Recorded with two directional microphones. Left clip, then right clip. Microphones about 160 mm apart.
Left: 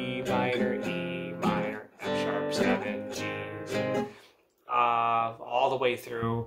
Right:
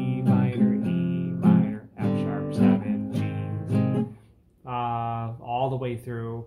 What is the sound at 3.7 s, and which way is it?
Music, 15° right (ahead or behind).